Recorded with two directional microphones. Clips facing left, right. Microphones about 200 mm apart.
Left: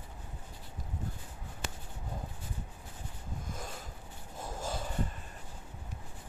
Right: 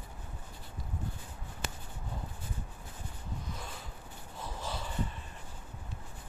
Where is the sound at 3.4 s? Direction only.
45° left (ahead or behind).